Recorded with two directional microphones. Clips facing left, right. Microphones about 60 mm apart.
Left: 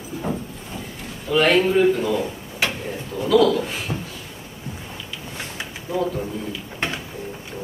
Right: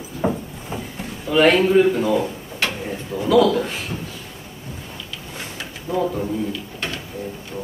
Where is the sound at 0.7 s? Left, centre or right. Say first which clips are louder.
Right 5 dB; centre.